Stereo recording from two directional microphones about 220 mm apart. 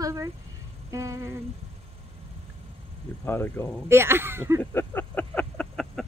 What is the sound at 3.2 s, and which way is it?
Speech, 10° left (ahead or behind).